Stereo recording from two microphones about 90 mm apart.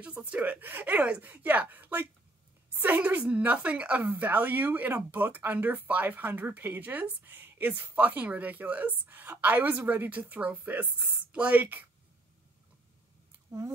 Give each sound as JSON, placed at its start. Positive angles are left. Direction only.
{"t": 0.0, "sound": "a woman's voice", "side_deg": -15}
{"t": 13.5, "sound": "speech", "side_deg": -40}